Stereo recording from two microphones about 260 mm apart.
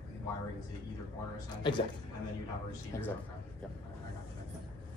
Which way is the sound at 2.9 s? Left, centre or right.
Centre.